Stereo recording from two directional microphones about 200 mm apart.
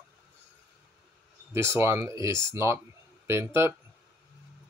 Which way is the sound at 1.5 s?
15° right (ahead or behind).